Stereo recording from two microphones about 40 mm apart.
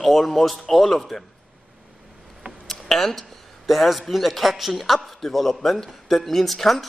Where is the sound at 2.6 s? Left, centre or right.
Centre.